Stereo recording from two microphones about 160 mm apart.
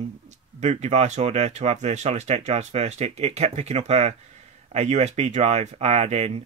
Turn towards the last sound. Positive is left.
turn(degrees=-45)  # may be behind; listen again after turning